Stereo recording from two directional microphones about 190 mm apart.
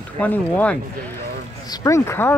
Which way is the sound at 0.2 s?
10° left (ahead or behind).